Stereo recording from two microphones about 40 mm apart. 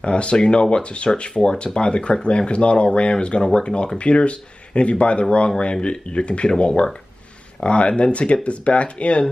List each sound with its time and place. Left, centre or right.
0.0 s speech: left